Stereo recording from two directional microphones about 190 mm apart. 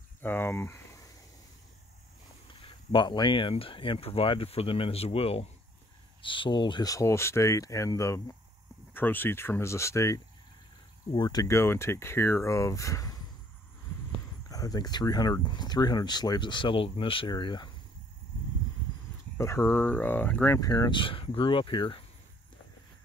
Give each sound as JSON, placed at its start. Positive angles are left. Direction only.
{"t": 0.2, "sound": "speech", "side_deg": 10}
{"t": 2.6, "sound": "speech", "side_deg": 25}
{"t": 14.5, "sound": "speech", "side_deg": 20}
{"t": 19.3, "sound": "speech", "side_deg": 15}